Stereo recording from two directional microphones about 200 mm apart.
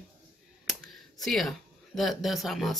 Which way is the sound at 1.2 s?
Centre (ahead or behind).